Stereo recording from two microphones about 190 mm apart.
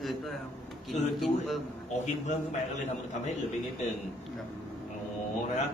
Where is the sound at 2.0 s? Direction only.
40° left (ahead or behind).